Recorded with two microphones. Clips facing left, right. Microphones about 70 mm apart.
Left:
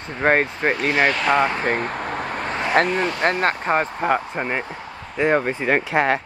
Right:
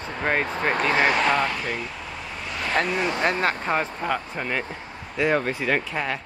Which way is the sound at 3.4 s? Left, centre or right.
Left.